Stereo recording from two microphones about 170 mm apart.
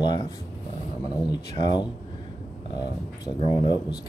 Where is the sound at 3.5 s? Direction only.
25° left (ahead or behind).